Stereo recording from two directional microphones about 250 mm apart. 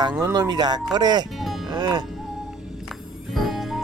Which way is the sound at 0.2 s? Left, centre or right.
Centre.